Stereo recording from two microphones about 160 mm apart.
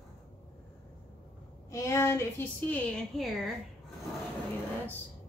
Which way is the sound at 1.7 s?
20° left (ahead or behind).